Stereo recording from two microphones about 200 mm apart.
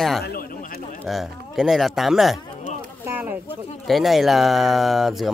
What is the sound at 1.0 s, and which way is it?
Speech, centre (ahead or behind).